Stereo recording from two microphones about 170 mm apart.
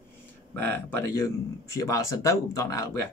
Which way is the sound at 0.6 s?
10° left (ahead or behind).